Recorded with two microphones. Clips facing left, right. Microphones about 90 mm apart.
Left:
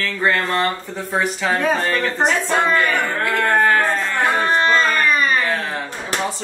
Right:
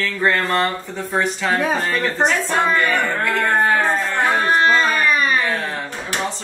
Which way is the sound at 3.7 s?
20° right (ahead or behind).